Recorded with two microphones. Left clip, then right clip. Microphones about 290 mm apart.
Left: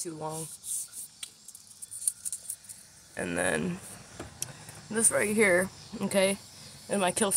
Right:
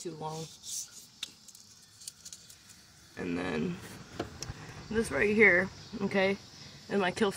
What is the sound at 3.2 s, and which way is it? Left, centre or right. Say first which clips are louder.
Speech: left 5 dB; left.